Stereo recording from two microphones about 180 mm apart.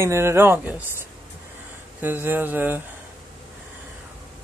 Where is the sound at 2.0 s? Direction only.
10° right (ahead or behind).